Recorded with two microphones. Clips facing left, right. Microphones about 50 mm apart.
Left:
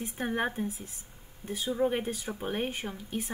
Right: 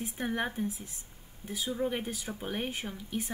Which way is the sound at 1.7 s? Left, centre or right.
Centre.